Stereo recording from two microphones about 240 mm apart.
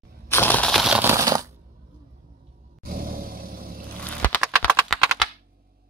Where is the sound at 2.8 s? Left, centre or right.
Right.